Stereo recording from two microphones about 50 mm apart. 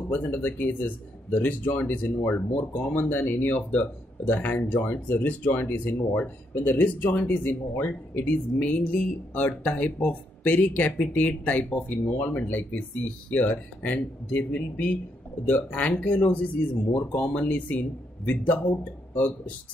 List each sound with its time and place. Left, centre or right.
0.1 s speech: left